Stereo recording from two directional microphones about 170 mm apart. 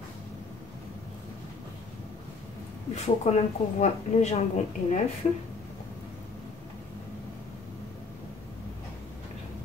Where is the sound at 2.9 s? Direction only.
40° left (ahead or behind).